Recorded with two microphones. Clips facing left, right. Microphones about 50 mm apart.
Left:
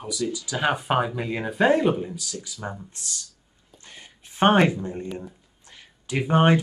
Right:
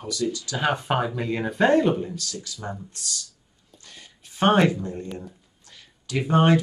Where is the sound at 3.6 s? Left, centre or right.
Left.